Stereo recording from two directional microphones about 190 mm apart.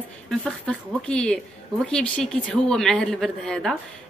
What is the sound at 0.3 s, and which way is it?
Speech, centre (ahead or behind).